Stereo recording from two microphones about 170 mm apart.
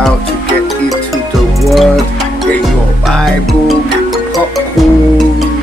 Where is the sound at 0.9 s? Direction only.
Centre (ahead or behind).